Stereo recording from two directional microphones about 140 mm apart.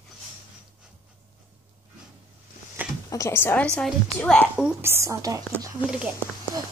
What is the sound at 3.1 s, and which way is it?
Speech, 20° left (ahead or behind).